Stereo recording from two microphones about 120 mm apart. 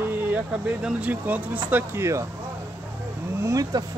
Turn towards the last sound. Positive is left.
turn(degrees=-30)  # may be behind; listen again after turning